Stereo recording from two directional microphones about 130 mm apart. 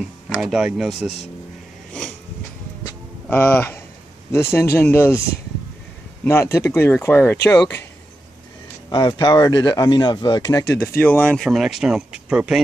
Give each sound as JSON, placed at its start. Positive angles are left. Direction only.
{"t": 0.3, "sound": "speech", "side_deg": -5}
{"t": 3.3, "sound": "speech", "side_deg": 15}
{"t": 8.9, "sound": "speech", "side_deg": 30}
{"t": 10.8, "sound": "speech", "side_deg": 15}
{"t": 11.4, "sound": "speech", "side_deg": -5}